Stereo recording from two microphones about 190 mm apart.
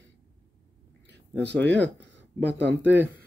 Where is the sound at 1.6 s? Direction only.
70° right (ahead or behind).